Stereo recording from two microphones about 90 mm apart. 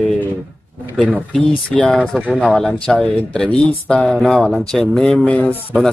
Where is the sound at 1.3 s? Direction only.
10° left (ahead or behind).